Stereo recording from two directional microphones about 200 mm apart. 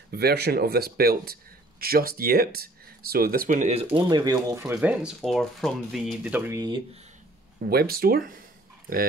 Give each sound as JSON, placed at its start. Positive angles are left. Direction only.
{"t": 0.1, "sound": "speech", "side_deg": -50}
{"t": 4.7, "sound": "speech", "side_deg": -5}
{"t": 7.6, "sound": "speech", "side_deg": -50}